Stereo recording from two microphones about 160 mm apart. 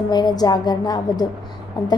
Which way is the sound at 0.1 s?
25° left (ahead or behind).